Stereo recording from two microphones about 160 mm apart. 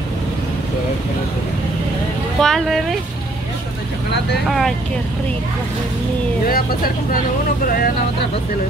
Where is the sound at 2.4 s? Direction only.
Centre (ahead or behind).